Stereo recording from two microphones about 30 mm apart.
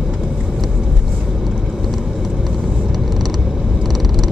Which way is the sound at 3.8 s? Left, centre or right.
Centre.